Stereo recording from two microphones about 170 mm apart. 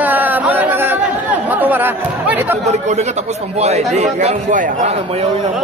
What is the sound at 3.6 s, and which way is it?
A man's voice, 40° right (ahead or behind).